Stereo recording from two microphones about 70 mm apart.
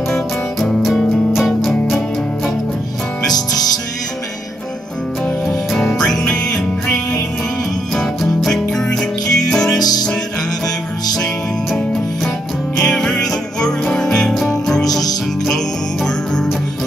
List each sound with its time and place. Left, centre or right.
0.1 s music: centre
5.2 s music: centre
9.8 s music: left
11.7 s music: centre